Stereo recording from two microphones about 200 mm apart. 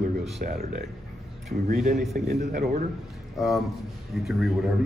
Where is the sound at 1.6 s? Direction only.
45° right (ahead or behind).